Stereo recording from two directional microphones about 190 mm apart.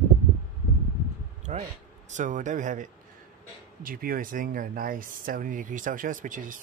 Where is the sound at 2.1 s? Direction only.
40° right (ahead or behind).